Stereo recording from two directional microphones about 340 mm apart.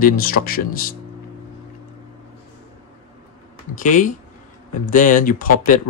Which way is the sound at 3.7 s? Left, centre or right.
Left.